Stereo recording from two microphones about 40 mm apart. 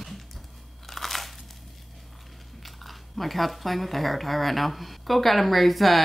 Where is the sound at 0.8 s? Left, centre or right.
Centre.